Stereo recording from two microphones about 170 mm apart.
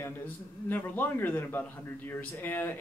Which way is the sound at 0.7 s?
10° left (ahead or behind).